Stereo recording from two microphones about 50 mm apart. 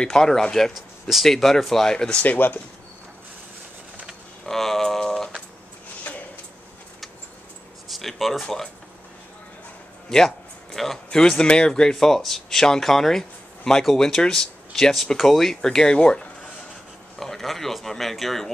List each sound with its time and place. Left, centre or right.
0.0 s speech: centre
0.7 s speech: centre
2.1 s speech: left
4.5 s bird: centre
7.9 s speech: centre
10.0 s a sound: centre
11.1 s speech: centre
17.2 s speech: centre